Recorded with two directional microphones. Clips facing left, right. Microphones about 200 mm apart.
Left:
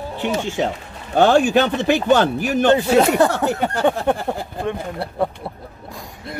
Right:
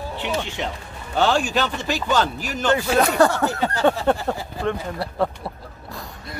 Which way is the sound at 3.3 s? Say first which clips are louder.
Left 2 dB; 15° left (ahead or behind).